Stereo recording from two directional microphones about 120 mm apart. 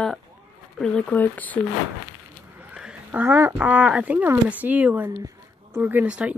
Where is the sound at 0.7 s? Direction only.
5° left (ahead or behind).